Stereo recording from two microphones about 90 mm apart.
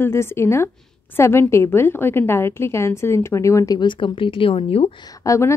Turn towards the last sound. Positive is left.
turn(degrees=30)  # may be behind; listen again after turning